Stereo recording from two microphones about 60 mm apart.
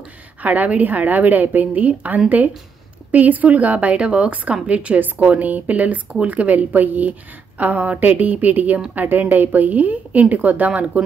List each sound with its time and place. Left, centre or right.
0.4 s a woman's voice: right